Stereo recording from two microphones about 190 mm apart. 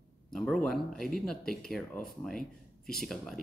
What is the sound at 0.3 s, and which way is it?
Speech, centre (ahead or behind).